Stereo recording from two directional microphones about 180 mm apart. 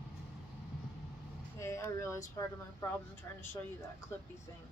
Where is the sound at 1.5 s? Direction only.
15° left (ahead or behind).